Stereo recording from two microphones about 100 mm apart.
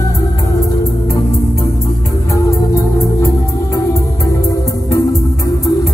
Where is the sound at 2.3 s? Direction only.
30° left (ahead or behind).